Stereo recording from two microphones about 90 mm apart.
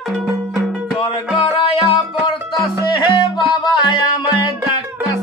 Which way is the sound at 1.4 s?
90° left.